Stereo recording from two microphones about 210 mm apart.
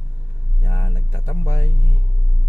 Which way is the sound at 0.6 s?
15° left (ahead or behind).